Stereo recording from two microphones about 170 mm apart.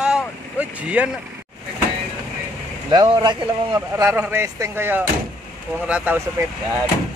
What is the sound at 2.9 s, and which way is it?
Speech, 25° right (ahead or behind).